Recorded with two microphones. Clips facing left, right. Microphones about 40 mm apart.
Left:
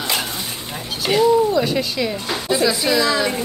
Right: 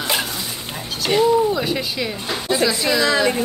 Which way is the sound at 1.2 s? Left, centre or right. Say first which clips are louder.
Left 2 dB; centre.